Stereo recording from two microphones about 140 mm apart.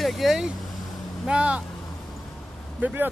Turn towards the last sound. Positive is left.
turn(degrees=-10)  # may be behind; listen again after turning